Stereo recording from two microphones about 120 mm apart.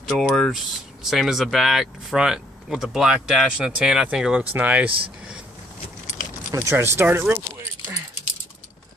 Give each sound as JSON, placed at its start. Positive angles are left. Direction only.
{"t": 0.1, "sound": "speech", "side_deg": 0}
{"t": 6.5, "sound": "speech", "side_deg": -25}